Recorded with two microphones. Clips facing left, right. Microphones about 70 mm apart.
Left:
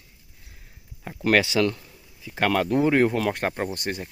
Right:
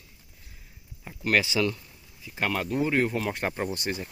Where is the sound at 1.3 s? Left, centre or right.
Left.